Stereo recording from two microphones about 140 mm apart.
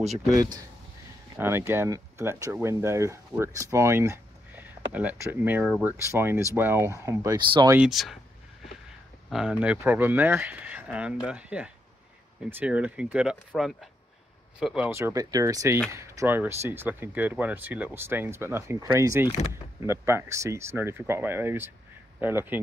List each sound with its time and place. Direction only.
1.3 s speech: 20° right (ahead or behind)
7.3 s speech: 30° right (ahead or behind)
7.9 s speech: centre (ahead or behind)
9.3 s speech: 5° right (ahead or behind)
14.9 s speech: 20° right (ahead or behind)